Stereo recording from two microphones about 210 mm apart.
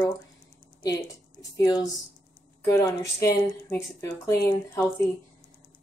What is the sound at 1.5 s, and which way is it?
Speech, 15° left (ahead or behind).